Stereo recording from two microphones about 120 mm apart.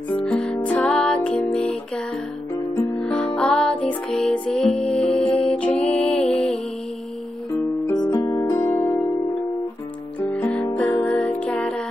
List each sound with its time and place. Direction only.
0.1 s music: 10° left (ahead or behind)
3.0 s music: 10° left (ahead or behind)
7.9 s music: 35° left (ahead or behind)
10.3 s music: 10° left (ahead or behind)